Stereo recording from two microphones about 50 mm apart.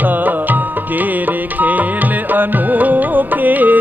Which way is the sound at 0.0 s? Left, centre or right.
Right.